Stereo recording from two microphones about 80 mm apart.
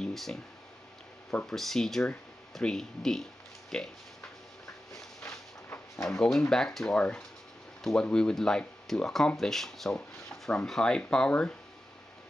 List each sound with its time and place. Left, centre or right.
0.0 s a sound: centre
1.3 s speech: centre
6.0 s speech: centre